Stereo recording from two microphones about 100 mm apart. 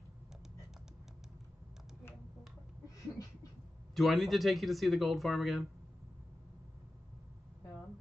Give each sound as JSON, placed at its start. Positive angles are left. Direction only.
{"t": 3.9, "sound": "speech", "side_deg": 0}